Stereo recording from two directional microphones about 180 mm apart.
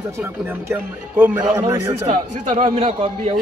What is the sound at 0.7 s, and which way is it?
A man's voice, 15° right (ahead or behind).